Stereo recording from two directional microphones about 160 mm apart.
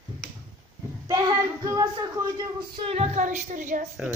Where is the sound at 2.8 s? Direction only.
40° right (ahead or behind).